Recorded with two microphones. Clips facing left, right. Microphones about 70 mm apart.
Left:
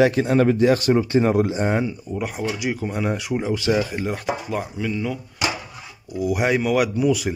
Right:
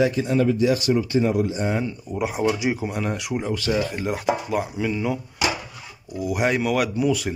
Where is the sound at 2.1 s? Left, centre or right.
Centre.